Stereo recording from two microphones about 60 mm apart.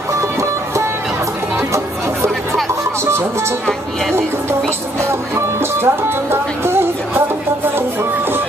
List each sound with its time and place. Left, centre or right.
5.3 s speech: right